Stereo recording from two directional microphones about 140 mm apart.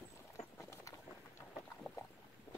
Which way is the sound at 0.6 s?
20° left (ahead or behind).